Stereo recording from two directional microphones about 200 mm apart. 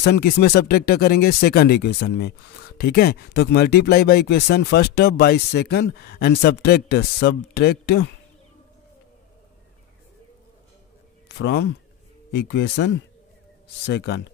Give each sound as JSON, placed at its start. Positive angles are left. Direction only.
{"t": 0.0, "sound": "speech", "side_deg": 55}
{"t": 11.2, "sound": "speech", "side_deg": 60}